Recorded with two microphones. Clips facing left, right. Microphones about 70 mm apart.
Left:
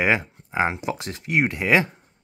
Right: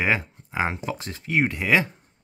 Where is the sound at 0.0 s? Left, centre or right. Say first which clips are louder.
Left 2 dB; centre.